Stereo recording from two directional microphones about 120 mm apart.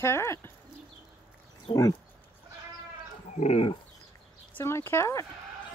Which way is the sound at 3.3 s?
65° left (ahead or behind).